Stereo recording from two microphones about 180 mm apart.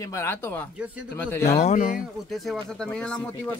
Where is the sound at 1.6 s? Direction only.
40° left (ahead or behind).